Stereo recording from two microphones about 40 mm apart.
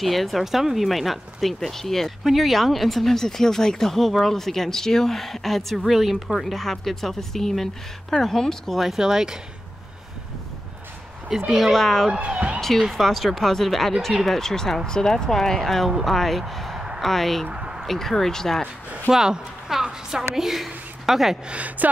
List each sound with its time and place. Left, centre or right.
0.0 s speech: centre
8.7 s speech: centre
11.5 s speech: centre
12.1 s speech: right
12.5 s speech: centre
16.7 s a sound: centre
17.0 s speech: centre
19.0 s a woman's voice: centre
21.5 s speech: right